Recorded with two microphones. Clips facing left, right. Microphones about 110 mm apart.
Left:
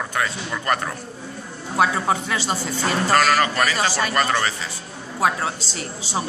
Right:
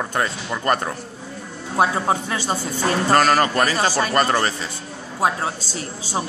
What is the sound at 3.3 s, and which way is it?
Speech, 35° right (ahead or behind).